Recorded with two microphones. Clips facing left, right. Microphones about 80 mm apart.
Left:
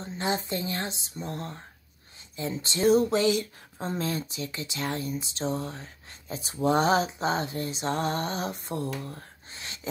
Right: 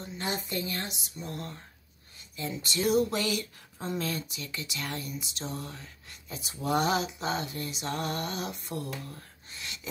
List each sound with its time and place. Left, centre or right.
0.0 s speech: left